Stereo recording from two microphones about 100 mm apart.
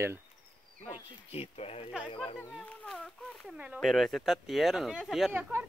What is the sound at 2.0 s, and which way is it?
Speech, 60° left (ahead or behind).